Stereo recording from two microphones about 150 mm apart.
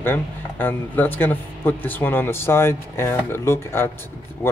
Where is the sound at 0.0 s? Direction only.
15° left (ahead or behind).